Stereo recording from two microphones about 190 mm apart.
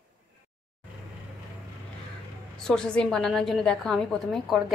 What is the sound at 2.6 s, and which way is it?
A woman's voice, 5° left (ahead or behind).